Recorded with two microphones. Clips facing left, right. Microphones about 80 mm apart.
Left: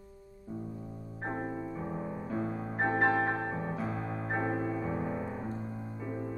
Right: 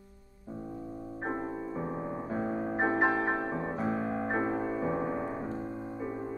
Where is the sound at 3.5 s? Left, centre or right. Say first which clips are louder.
Right 3 dB; right.